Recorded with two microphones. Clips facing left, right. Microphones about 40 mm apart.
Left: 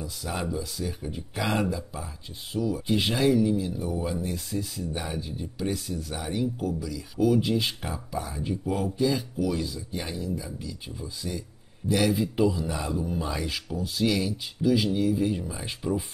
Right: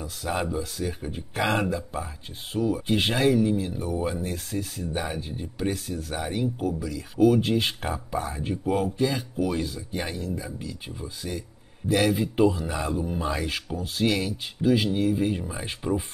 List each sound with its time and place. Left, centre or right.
0.0 s speech: right
6.3 s speech: right
6.9 s speech: right